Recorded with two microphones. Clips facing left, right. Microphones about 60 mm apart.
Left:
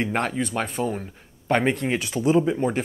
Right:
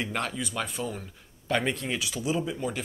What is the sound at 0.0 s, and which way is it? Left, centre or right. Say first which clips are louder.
A man's voice: left 7 dB; left.